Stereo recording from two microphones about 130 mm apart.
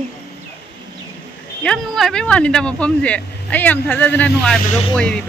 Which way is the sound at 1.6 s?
5° left (ahead or behind).